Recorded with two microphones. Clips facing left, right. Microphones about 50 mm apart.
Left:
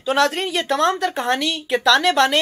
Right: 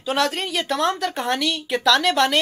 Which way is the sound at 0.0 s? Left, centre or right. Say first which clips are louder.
Left 4 dB; centre.